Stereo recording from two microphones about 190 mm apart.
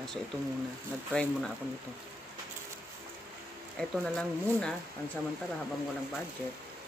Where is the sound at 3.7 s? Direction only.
5° left (ahead or behind).